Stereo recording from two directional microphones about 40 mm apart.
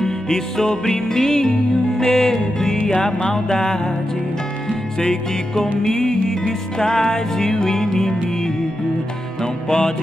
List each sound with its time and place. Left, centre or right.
0.0 s music: centre
5.8 s music: centre
9.4 s music: centre